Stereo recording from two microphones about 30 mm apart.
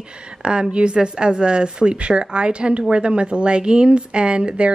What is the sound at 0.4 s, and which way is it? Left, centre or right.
A woman's voice, right.